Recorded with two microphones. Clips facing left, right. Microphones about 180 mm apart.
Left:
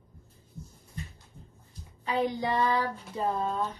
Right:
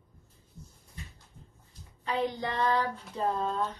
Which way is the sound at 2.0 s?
10° left (ahead or behind).